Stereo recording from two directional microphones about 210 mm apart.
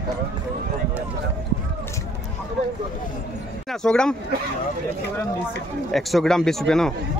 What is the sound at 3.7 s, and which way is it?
Speech, 5° left (ahead or behind).